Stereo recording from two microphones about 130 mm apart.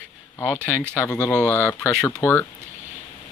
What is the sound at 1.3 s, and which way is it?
Speech, 15° left (ahead or behind).